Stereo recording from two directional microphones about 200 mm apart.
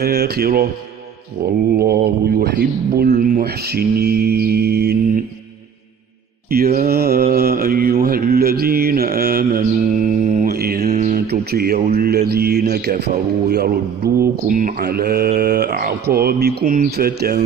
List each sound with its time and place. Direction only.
0.0 s speech: 50° right (ahead or behind)
6.5 s speech: 50° right (ahead or behind)
7.3 s mantra: 50° right (ahead or behind)
10.9 s mantra: 35° right (ahead or behind)
11.2 s speech: 50° right (ahead or behind)
14.5 s speech: 40° right (ahead or behind)